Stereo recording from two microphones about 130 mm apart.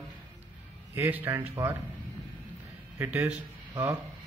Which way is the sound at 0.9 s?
15° right (ahead or behind).